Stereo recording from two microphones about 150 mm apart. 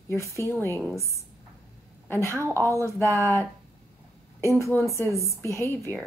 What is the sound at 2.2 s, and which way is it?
Speech, 20° right (ahead or behind).